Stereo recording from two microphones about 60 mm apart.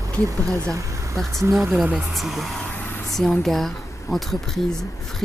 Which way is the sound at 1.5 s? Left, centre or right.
Centre.